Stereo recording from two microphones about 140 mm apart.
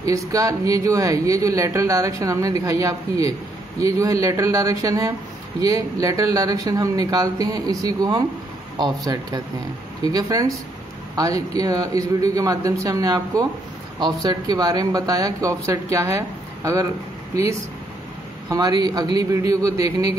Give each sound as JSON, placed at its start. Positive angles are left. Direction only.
{"t": 0.1, "sound": "speech", "side_deg": -25}
{"t": 18.5, "sound": "speech", "side_deg": -25}